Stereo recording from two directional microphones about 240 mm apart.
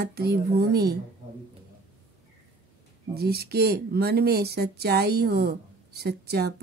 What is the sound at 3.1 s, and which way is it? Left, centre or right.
Speech, right.